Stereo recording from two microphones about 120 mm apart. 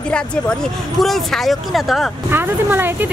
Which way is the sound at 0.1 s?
5° left (ahead or behind).